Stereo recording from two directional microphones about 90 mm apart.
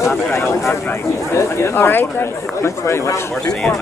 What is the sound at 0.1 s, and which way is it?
Speech, 30° left (ahead or behind).